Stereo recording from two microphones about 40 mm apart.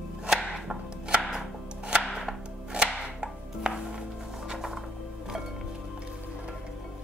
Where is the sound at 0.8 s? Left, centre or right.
Right.